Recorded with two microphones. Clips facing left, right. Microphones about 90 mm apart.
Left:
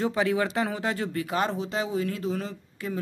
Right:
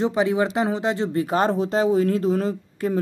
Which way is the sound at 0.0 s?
20° right (ahead or behind).